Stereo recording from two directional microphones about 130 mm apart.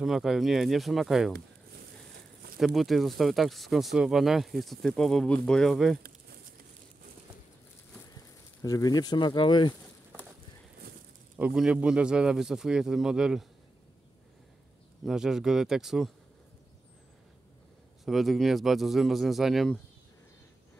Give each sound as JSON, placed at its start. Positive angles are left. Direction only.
{"t": 0.0, "sound": "speech", "side_deg": 0}
{"t": 2.5, "sound": "speech", "side_deg": 0}
{"t": 8.6, "sound": "speech", "side_deg": 30}
{"t": 11.3, "sound": "speech", "side_deg": -5}
{"t": 15.0, "sound": "speech", "side_deg": -5}
{"t": 18.0, "sound": "speech", "side_deg": 0}